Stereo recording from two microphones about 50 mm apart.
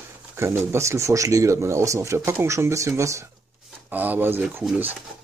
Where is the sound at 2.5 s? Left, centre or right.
Right.